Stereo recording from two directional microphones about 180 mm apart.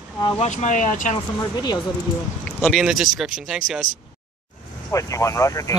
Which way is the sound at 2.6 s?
Centre (ahead or behind).